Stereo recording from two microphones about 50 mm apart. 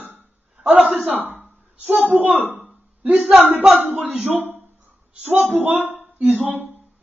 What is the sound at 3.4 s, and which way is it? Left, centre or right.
Speech, right.